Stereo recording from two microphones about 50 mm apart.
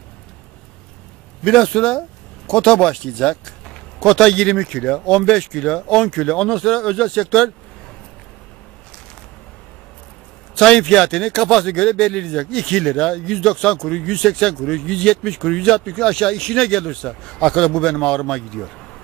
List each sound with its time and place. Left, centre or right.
1.4 s speech: centre
10.5 s speech: centre